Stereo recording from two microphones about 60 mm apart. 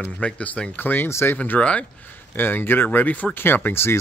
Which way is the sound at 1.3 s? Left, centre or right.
Left.